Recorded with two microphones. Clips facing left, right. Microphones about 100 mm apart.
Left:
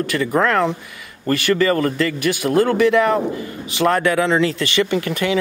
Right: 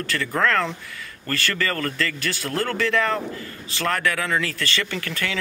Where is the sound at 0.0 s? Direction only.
15° left (ahead or behind).